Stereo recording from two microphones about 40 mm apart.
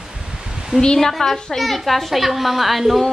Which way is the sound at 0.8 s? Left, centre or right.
Centre.